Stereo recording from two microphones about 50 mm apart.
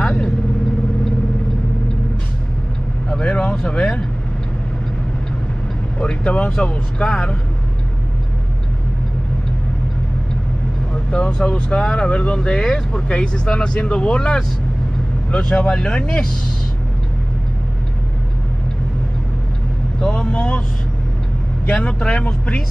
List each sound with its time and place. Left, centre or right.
0.0 s vehicle: centre
3.1 s vehicle: left
3.5 s speech: centre
5.9 s speech: left
10.9 s vehicle: centre
11.3 s speech: centre
15.4 s speech: centre
20.0 s speech: centre
21.6 s speech: centre